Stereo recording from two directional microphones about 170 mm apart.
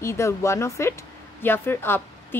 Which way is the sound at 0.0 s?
15° left (ahead or behind).